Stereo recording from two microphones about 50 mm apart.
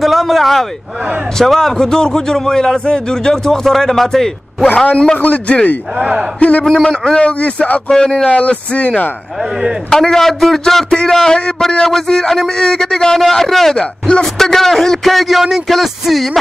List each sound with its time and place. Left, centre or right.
0.0 s a sound: centre
1.4 s a man's voice: centre
5.2 s a man's voice: left
5.9 s a man's voice: centre
6.6 s a man's voice: centre
7.2 s a man's voice: left
7.9 s a man's voice: centre; by 9.1 s left
9.8 s a man's voice: centre
13.7 s a man's voice: centre
14.2 s a man's voice: centre